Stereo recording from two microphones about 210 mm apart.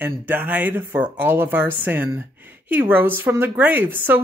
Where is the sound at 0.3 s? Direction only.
10° right (ahead or behind).